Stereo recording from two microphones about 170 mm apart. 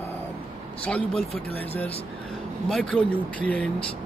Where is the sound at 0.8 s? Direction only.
5° left (ahead or behind).